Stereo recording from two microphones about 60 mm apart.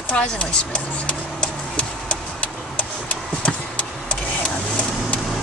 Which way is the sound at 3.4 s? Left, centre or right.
Centre.